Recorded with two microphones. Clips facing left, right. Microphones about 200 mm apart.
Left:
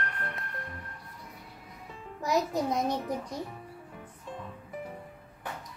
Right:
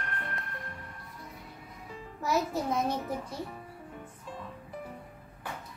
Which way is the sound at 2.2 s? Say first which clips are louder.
Left 2 dB; 15° left (ahead or behind).